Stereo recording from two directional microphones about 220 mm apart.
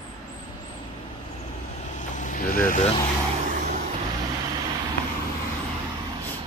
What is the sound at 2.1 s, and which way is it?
Vehicle, 35° left (ahead or behind).